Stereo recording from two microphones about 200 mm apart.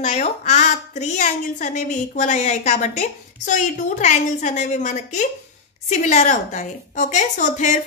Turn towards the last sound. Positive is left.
turn(degrees=40)  # may be behind; listen again after turning